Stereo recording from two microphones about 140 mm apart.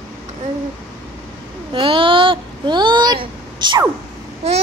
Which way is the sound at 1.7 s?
40° right (ahead or behind).